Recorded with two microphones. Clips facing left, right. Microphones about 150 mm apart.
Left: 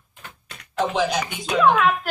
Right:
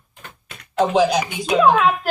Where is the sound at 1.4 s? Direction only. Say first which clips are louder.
Right 3 dB; 20° right (ahead or behind).